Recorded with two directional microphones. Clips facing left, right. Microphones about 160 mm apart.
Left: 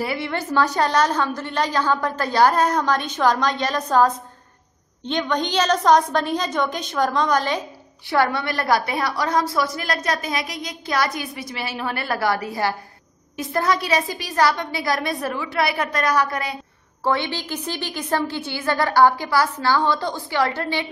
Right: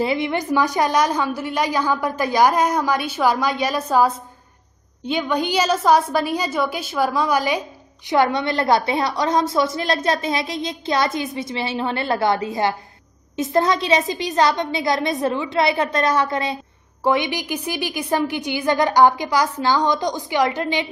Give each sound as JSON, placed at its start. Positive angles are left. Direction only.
{"t": 0.0, "sound": "a woman's voice", "side_deg": -20}